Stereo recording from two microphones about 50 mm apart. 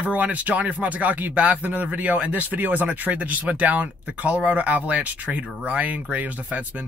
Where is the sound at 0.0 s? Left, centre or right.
Right.